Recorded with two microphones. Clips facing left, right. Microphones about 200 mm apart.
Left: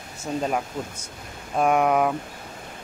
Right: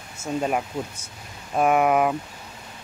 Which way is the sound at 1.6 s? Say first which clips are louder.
Right 1 dB; 5° right (ahead or behind).